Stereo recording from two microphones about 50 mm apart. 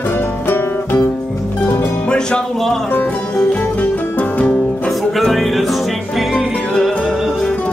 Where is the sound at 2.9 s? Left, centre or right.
Left.